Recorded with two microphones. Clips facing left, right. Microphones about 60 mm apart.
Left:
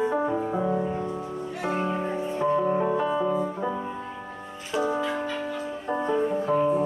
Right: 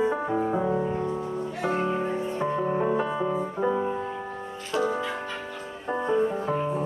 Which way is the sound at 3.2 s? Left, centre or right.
Right.